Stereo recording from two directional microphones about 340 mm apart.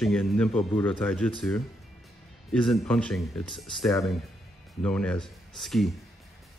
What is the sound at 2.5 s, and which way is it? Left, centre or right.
Speech, centre.